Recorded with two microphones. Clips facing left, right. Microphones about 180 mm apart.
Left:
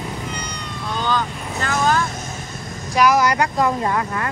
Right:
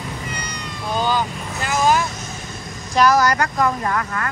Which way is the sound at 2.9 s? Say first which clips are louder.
Even; 10° left (ahead or behind).